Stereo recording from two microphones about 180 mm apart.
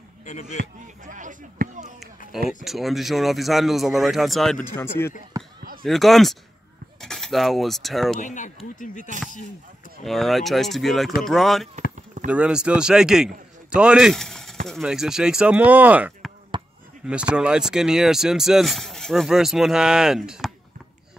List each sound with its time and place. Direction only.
0.2 s speech: 40° left (ahead or behind)
1.0 s speech: 45° right (ahead or behind)
2.6 s speech: centre (ahead or behind)
4.7 s speech: 15° left (ahead or behind)
5.6 s a sound: 50° right (ahead or behind)
5.9 s speech: centre (ahead or behind)
8.2 s speech: 45° left (ahead or behind)
10.0 s speech: centre (ahead or behind)
16.5 s basketball bounce: 25° right (ahead or behind)
17.0 s speech: 5° right (ahead or behind)